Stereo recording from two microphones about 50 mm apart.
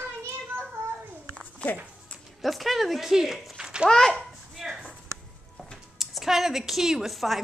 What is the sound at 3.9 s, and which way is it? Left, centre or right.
Speech, centre.